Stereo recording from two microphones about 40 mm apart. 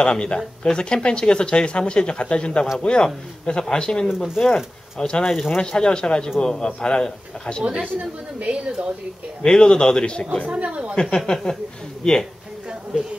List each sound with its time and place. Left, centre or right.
0.0 s speech: left
4.2 s speech: centre
7.8 s a woman's voice: right
9.4 s speech: left
10.4 s a woman's voice: right
11.0 s speech: left